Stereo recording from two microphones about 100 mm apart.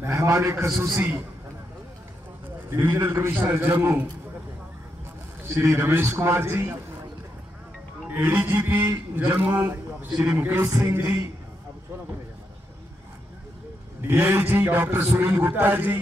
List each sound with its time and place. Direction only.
0.0 s a man's voice: 25° right (ahead or behind)
2.8 s a man's voice: 25° right (ahead or behind)
5.5 s a man's voice: 25° right (ahead or behind)
8.1 s a man's voice: 20° right (ahead or behind)
10.7 s a man's voice: 35° right (ahead or behind)
14.0 s a man's voice: 25° right (ahead or behind)